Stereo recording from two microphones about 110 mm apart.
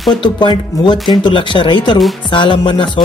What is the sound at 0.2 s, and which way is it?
Speech, 45° left (ahead or behind).